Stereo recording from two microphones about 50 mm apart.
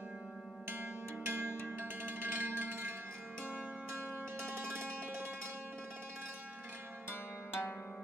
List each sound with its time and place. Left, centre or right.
0.7 s music: right
4.1 s music: right
7.1 s music: left